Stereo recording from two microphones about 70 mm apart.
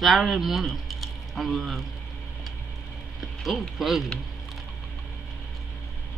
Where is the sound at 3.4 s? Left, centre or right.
Centre.